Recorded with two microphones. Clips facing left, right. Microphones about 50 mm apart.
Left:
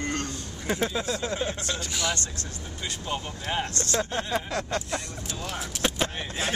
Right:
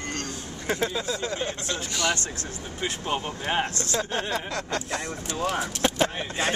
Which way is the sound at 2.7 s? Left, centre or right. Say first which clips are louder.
Right 4 dB; right.